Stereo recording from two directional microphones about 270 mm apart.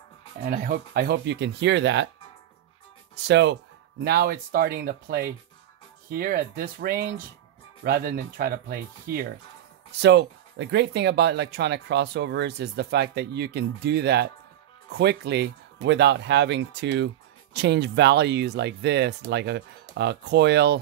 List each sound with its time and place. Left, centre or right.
0.5 s speech: right
3.3 s speech: right